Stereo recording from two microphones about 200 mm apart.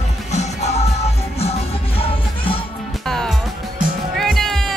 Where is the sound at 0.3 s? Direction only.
35° left (ahead or behind).